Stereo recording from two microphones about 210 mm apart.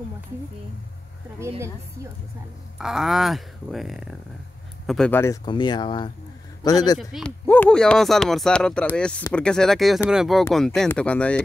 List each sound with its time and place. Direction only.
2.8 s a man's voice: centre (ahead or behind); by 7.0 s 15° left (ahead or behind)
7.0 s speech: centre (ahead or behind)